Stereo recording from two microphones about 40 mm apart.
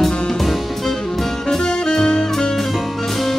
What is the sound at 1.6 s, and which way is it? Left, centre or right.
Music, left.